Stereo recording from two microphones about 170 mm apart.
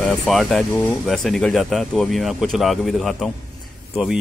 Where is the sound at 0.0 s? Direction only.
Centre (ahead or behind).